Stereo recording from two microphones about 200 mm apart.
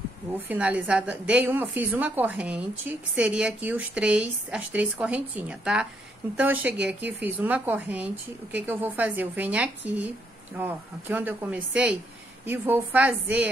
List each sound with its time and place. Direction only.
0.5 s a woman's voice: 5° right (ahead or behind)